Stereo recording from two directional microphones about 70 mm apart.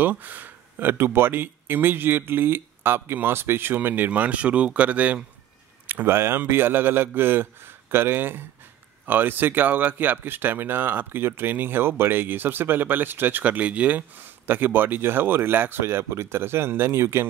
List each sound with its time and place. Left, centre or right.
0.0 s speech: right
5.9 s speech: right